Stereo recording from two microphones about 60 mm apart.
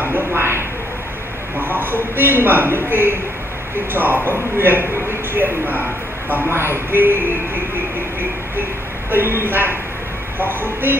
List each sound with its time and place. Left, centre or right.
0.0 s a sound: right
1.6 s a man's voice: right
9.1 s a man's voice: right